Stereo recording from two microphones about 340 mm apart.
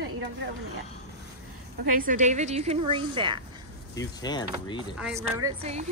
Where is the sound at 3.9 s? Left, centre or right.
Centre.